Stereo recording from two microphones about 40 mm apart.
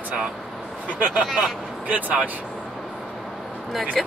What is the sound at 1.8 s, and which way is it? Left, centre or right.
Speech, right.